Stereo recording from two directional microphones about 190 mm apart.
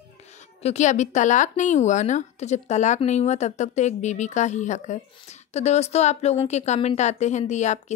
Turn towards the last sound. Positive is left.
turn(degrees=40)  # may be behind; listen again after turning